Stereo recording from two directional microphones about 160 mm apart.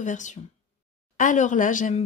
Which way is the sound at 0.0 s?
50° left (ahead or behind).